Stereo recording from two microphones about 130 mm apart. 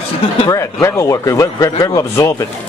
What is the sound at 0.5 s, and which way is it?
Speech, 25° left (ahead or behind).